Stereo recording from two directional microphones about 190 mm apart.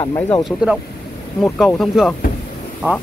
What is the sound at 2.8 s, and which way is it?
Speech, 10° right (ahead or behind).